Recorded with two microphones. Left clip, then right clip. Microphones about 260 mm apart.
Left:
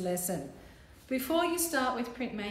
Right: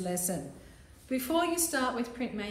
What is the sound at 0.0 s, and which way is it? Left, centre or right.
A woman's voice, centre.